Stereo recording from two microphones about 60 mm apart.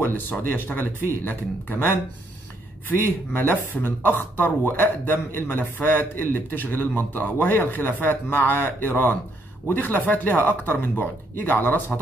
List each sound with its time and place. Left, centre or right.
0.0 s speech: left